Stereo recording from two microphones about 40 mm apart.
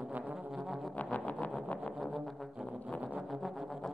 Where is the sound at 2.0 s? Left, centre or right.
Centre.